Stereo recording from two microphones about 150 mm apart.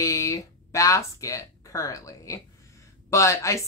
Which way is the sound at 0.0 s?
20° left (ahead or behind).